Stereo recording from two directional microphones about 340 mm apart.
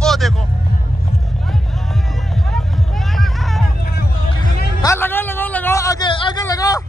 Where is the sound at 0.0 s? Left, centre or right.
Centre.